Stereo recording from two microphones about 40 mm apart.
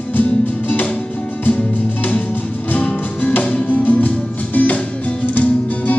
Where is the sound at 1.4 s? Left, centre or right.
Left.